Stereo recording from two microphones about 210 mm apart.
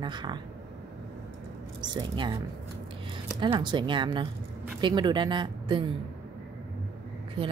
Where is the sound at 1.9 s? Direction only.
20° right (ahead or behind).